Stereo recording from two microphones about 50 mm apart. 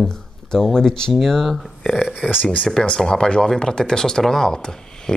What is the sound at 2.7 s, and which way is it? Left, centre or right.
Speech, centre.